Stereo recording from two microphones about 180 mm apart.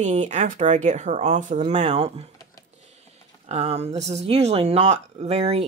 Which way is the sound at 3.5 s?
35° right (ahead or behind).